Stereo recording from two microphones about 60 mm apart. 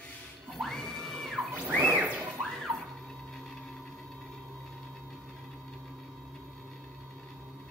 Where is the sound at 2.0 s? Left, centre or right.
Right.